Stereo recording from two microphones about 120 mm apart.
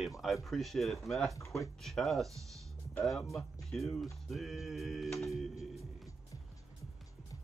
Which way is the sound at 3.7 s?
Centre (ahead or behind).